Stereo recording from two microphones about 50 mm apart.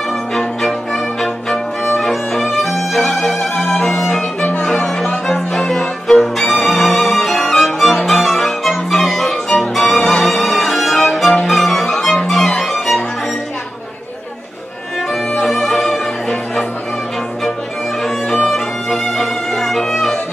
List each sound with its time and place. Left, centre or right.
0.3 s music: centre
3.7 s music: centre
4.4 s music: left
5.0 s music: centre
15.4 s music: centre
18.4 s music: centre